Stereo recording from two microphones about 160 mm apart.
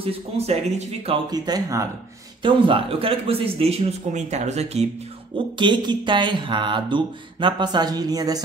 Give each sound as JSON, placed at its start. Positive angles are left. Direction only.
{"t": 0.0, "sound": "speech", "side_deg": -40}
{"t": 1.3, "sound": "speech", "side_deg": -25}
{"t": 5.6, "sound": "speech", "side_deg": -30}